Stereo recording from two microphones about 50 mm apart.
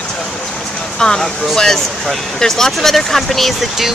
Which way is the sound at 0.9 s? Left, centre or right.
Centre.